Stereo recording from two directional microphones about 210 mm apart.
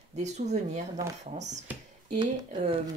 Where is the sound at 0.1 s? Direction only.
35° right (ahead or behind).